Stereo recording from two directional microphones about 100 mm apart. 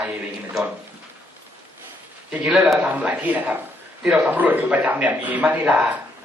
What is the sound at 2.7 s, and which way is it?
A man's voice, 10° right (ahead or behind).